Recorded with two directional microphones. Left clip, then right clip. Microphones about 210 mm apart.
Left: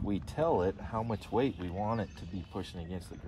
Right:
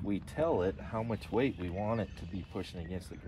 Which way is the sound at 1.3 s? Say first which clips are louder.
Left 1 dB; 15° left (ahead or behind).